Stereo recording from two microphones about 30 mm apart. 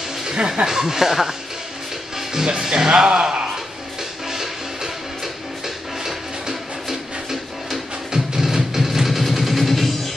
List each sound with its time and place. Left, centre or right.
0.7 s speech: centre
4.3 s music: centre
6.0 s a sound: centre